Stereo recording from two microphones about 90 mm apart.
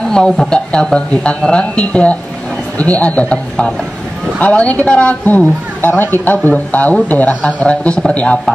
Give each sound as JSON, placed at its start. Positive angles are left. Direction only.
{"t": 0.1, "sound": "speech", "side_deg": 10}